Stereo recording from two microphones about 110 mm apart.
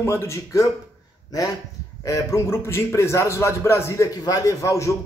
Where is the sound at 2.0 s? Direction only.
30° left (ahead or behind).